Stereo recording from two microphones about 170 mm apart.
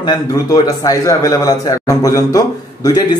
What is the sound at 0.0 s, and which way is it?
A man's voice, 20° left (ahead or behind).